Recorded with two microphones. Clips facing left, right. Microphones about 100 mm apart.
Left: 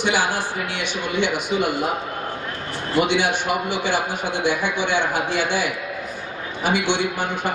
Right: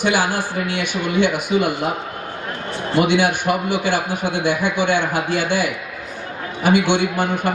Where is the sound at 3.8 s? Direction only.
50° right (ahead or behind).